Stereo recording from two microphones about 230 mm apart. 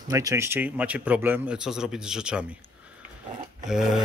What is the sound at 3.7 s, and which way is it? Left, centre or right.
Speech, centre.